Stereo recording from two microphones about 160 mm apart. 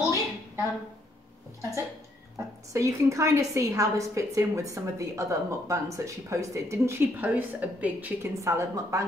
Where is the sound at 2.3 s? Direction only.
20° right (ahead or behind).